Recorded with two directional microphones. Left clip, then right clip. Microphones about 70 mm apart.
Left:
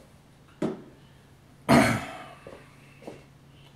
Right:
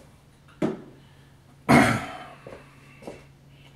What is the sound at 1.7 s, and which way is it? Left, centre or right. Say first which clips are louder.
Throat clearing: right 2 dB; left.